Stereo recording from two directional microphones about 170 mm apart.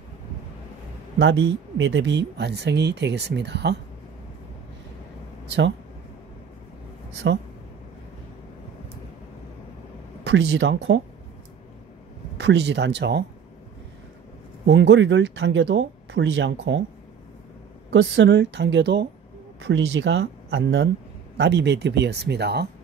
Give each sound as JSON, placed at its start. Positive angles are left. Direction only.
{"t": 1.8, "sound": "speech", "side_deg": -90}
{"t": 7.2, "sound": "speech", "side_deg": -90}
{"t": 10.2, "sound": "speech", "side_deg": -90}
{"t": 12.4, "sound": "speech", "side_deg": -90}
{"t": 14.7, "sound": "speech", "side_deg": -90}
{"t": 17.9, "sound": "speech", "side_deg": -90}